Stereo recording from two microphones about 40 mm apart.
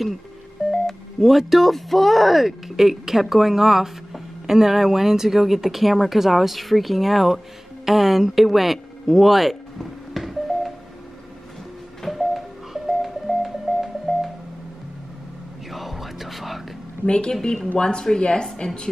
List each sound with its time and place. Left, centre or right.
0.7 s speech: centre
7.8 s a sound: centre
12.0 s music: centre
15.7 s a sound: centre
17.0 s speech: left
17.3 s speech: centre